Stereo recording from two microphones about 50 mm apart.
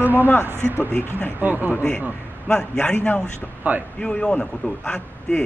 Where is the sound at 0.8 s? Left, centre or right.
Left.